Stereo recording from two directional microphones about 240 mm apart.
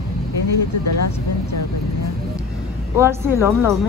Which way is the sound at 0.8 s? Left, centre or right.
Left.